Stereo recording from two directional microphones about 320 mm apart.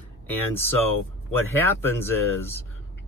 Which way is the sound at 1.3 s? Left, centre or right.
Centre.